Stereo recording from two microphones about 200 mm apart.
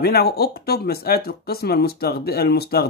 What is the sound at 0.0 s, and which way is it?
Speech, 50° left (ahead or behind).